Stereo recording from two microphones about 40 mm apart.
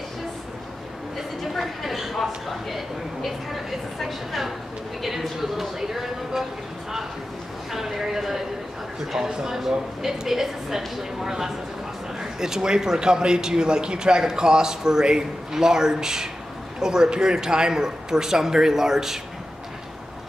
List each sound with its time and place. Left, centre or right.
1.4 s speech: centre
7.7 s a sound: centre
9.1 s a man's voice: centre